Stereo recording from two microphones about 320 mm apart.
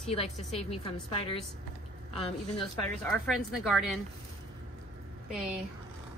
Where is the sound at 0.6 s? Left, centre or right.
Centre.